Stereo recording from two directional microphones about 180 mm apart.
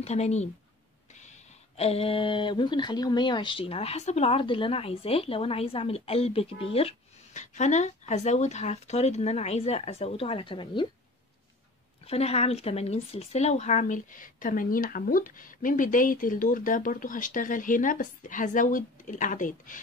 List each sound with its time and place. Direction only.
0.0 s speech: 35° left (ahead or behind)
12.1 s speech: 35° left (ahead or behind)